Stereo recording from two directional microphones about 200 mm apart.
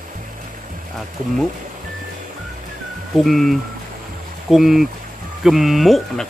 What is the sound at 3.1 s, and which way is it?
Speech, centre (ahead or behind).